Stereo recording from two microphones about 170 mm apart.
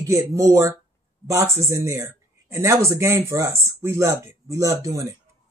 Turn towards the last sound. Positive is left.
turn(degrees=-20)  # may be behind; listen again after turning